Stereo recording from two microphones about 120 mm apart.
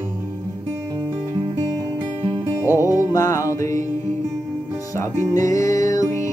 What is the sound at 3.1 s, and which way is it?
Music, 25° left (ahead or behind).